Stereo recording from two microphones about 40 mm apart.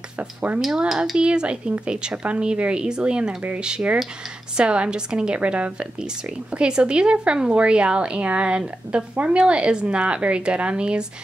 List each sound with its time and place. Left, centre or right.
0.5 s a woman's voice: right